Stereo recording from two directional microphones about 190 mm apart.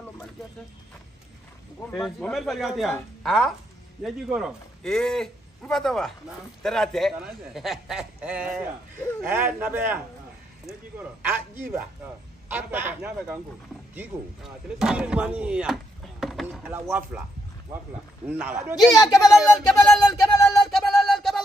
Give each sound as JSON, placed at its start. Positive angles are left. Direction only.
{"t": 2.0, "sound": "a man's voice", "side_deg": 0}
{"t": 12.4, "sound": "a man's voice", "side_deg": -10}
{"t": 18.3, "sound": "a man's voice", "side_deg": -10}
{"t": 18.8, "sound": "speech", "side_deg": 20}
{"t": 19.1, "sound": "speech", "side_deg": 0}
{"t": 20.2, "sound": "a sound", "side_deg": 0}